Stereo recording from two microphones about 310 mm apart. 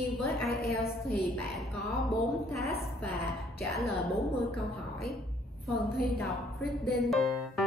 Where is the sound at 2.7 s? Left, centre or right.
Left.